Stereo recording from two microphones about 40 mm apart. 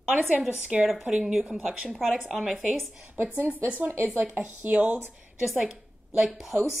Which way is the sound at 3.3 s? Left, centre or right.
Right.